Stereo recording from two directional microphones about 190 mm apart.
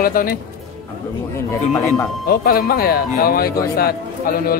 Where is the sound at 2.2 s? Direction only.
50° left (ahead or behind).